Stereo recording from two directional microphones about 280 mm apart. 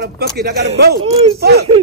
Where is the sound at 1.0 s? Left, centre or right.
Centre.